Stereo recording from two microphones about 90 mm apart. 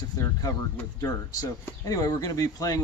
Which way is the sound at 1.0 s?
40° left (ahead or behind).